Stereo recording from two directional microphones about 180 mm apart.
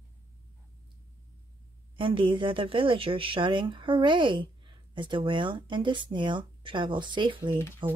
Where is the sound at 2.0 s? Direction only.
30° right (ahead or behind).